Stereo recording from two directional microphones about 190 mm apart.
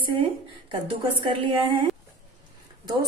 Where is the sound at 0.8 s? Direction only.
30° right (ahead or behind).